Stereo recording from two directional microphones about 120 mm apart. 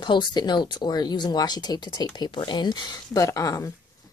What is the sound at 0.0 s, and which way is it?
Speech, 40° left (ahead or behind).